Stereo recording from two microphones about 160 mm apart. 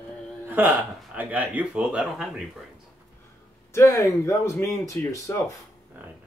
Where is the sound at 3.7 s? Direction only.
20° left (ahead or behind).